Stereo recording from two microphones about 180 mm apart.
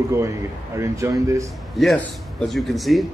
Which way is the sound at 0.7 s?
15° right (ahead or behind).